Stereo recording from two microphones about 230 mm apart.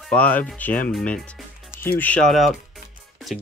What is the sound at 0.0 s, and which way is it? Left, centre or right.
Speech, centre.